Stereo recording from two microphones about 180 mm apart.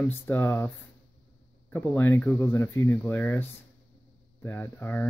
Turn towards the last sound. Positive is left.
turn(degrees=10)  # may be behind; listen again after turning